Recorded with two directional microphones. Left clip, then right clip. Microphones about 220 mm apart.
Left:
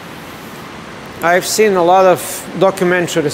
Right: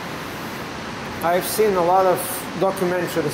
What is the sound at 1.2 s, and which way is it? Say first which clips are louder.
Speech: left 7 dB; 45° left (ahead or behind).